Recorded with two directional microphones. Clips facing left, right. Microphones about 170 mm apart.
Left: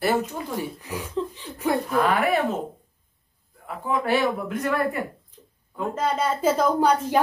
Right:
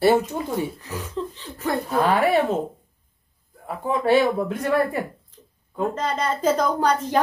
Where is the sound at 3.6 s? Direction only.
30° right (ahead or behind).